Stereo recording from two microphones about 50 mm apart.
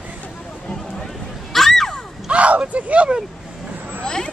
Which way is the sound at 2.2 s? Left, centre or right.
Right.